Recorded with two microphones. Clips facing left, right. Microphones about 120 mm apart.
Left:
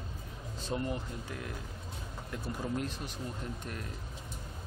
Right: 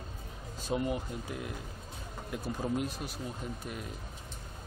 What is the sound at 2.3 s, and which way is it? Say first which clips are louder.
Speech: right 3 dB; 15° right (ahead or behind).